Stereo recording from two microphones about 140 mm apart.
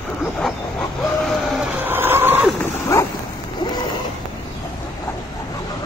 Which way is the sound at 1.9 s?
15° right (ahead or behind).